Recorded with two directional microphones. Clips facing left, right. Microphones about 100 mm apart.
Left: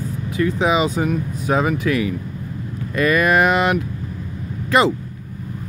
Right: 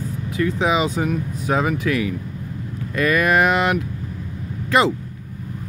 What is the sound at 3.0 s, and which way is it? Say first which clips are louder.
Speech: left 1 dB; 10° left (ahead or behind).